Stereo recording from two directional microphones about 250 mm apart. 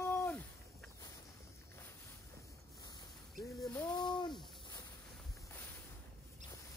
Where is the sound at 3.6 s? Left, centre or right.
Centre.